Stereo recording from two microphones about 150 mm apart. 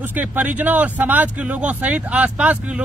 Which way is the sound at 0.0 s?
10° right (ahead or behind).